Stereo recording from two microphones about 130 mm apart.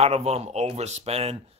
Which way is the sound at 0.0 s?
55° right (ahead or behind).